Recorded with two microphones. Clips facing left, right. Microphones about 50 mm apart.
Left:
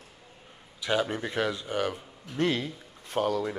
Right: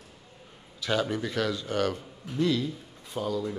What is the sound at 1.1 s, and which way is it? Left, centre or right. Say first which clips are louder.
Speech: even; left.